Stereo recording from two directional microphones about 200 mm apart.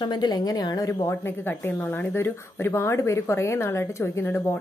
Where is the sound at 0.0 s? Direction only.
20° left (ahead or behind).